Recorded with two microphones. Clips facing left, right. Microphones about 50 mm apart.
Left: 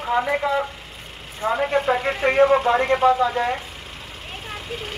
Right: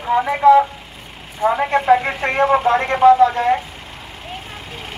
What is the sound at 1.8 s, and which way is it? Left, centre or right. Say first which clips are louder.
Speech: right 5 dB; right.